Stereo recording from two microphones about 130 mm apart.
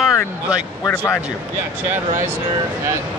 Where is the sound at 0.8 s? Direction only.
20° left (ahead or behind).